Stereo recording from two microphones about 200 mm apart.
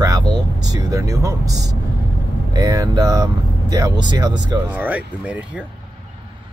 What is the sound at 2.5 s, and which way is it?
Speech, 20° right (ahead or behind).